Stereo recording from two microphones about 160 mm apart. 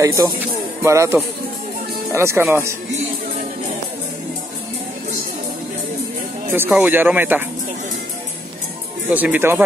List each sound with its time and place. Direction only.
0.0 s speech: 20° right (ahead or behind)
6.5 s speech: 10° right (ahead or behind)
9.1 s speech: 10° right (ahead or behind)